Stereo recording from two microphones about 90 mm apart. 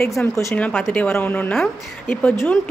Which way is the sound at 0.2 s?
15° left (ahead or behind).